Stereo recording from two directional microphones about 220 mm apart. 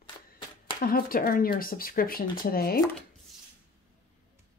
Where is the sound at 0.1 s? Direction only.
20° left (ahead or behind).